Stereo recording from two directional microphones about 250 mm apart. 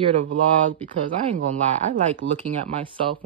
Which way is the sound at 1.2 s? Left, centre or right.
Right.